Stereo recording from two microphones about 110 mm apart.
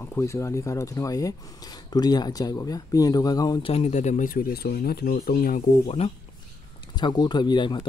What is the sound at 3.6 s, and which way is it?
Speech, 65° left (ahead or behind).